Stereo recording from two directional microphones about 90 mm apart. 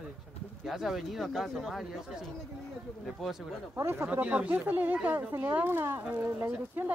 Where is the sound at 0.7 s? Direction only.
Centre (ahead or behind).